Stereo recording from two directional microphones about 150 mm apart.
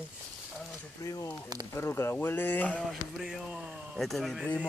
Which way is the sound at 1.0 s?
20° left (ahead or behind).